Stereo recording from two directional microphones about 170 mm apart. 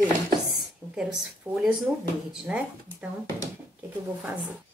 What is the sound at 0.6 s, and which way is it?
Speech, 5° right (ahead or behind).